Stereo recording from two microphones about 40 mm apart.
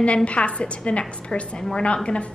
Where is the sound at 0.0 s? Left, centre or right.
Left.